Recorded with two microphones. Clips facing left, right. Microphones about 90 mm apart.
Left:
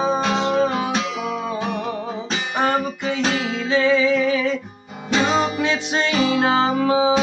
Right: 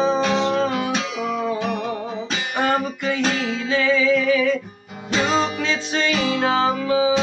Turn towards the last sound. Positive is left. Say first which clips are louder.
# left 2 dB
turn(degrees=25)  # may be behind; listen again after turning